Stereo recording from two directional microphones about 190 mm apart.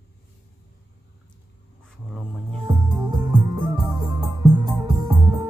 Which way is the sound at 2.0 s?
5° left (ahead or behind).